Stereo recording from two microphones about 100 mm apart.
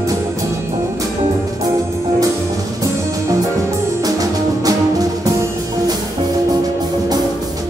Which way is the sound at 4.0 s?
35° right (ahead or behind).